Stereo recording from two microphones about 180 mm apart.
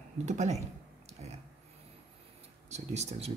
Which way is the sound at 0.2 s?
40° right (ahead or behind).